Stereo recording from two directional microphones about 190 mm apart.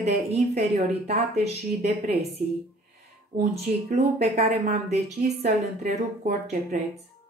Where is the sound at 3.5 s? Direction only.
35° right (ahead or behind).